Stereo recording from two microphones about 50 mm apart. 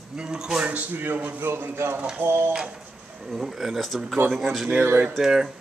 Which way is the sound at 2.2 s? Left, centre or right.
Right.